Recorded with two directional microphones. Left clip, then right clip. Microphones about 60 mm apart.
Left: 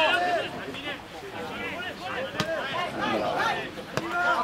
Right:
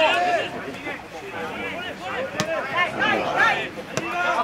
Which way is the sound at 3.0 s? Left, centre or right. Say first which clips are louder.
Right 6 dB; right.